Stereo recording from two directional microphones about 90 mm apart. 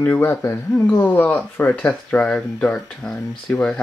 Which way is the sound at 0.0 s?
25° left (ahead or behind).